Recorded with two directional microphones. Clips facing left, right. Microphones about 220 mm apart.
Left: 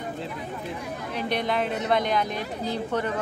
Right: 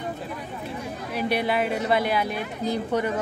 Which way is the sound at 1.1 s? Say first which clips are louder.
Right 3 dB; 10° right (ahead or behind).